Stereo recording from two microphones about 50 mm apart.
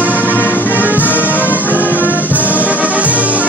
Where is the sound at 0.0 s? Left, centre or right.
Left.